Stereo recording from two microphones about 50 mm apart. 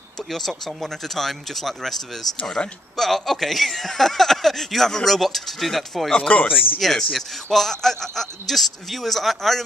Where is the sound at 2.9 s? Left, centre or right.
Centre.